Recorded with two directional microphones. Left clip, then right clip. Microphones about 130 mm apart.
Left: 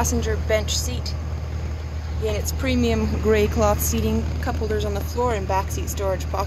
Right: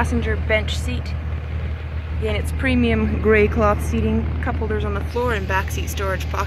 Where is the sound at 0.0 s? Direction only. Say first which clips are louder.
Right 1 dB; centre (ahead or behind).